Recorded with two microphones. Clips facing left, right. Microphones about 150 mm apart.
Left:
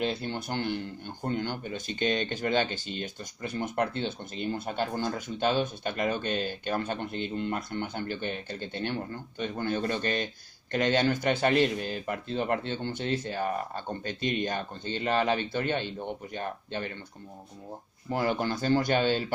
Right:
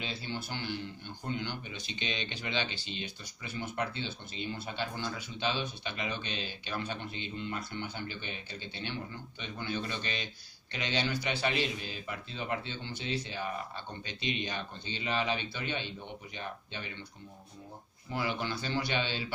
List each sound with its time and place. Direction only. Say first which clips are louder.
0.0 s speech: left 8 dB; 55° left (ahead or behind)
18.1 s speech: left 6 dB; 45° left (ahead or behind)